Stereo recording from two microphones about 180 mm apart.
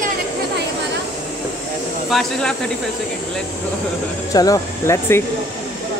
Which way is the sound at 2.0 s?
Centre (ahead or behind).